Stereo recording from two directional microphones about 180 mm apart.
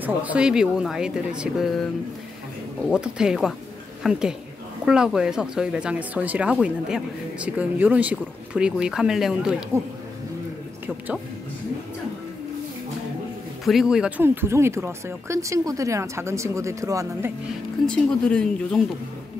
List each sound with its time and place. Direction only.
0.0 s speech: 10° right (ahead or behind)
2.9 s speech: 5° right (ahead or behind)
13.7 s speech: 5° right (ahead or behind)
17.8 s speech: 5° left (ahead or behind)